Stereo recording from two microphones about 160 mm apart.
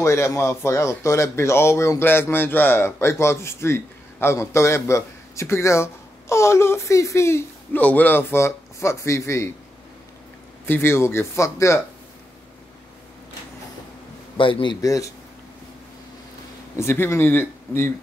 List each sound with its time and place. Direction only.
0.0 s speech: 20° left (ahead or behind)
10.6 s speech: 15° left (ahead or behind)
14.3 s a man's voice: 30° left (ahead or behind)
16.7 s speech: 15° left (ahead or behind)